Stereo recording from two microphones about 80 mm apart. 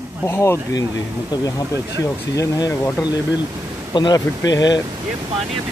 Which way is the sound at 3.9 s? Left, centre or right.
Left.